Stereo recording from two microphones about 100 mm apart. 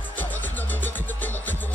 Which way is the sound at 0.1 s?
20° left (ahead or behind).